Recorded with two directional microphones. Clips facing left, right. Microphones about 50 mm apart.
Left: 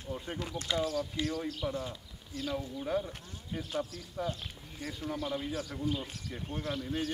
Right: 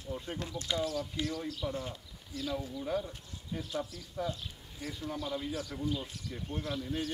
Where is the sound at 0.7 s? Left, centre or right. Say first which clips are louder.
Left 2 dB; left.